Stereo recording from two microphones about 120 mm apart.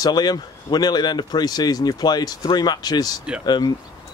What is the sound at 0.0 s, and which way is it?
Speech, 35° left (ahead or behind).